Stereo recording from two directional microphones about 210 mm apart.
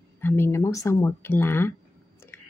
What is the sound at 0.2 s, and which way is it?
Speech, 10° left (ahead or behind).